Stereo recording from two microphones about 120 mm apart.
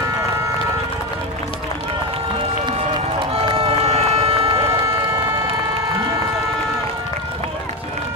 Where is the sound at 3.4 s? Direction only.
50° right (ahead or behind).